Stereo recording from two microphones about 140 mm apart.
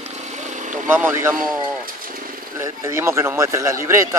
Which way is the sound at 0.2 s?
60° right (ahead or behind).